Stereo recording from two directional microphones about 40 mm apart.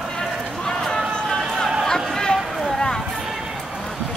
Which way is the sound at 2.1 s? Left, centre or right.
Centre.